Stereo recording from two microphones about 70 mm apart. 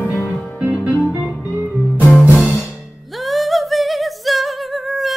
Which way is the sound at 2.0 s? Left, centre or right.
Left.